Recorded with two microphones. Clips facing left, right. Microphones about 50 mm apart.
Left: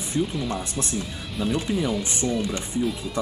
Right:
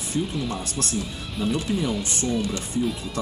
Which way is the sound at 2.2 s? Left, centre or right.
Centre.